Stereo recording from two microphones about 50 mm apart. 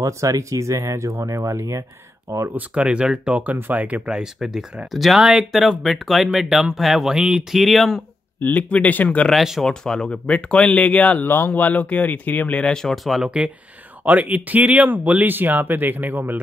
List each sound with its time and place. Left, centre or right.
0.2 s speech: right
2.7 s speech: right
3.5 s speech: right
3.8 s speech: right
4.4 s speech: centre
8.4 s speech: left
9.3 s speech: centre
9.6 s speech: centre; by 11.2 s left
11.2 s speech: left
11.5 s speech: left
12.7 s speech: centre
14.0 s speech: right